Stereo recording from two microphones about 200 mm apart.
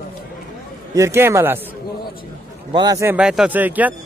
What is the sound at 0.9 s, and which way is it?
Speech, 15° right (ahead or behind).